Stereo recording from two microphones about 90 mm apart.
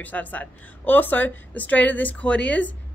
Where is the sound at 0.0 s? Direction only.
20° left (ahead or behind).